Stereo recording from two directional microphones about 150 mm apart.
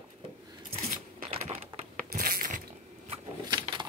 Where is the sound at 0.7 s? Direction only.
65° right (ahead or behind).